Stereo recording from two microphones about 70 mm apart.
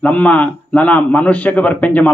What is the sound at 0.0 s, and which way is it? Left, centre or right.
Speech, centre.